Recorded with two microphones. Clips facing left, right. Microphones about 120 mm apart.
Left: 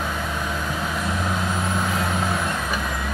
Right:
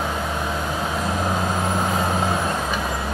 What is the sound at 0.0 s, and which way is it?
Vehicle, 30° right (ahead or behind).